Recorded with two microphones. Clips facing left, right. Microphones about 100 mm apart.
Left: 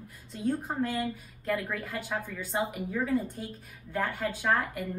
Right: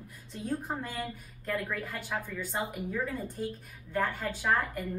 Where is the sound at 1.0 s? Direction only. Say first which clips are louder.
Left 5 dB; 5° left (ahead or behind).